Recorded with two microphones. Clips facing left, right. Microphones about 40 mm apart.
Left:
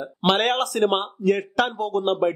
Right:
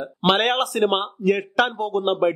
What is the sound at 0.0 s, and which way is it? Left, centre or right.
Speech, centre.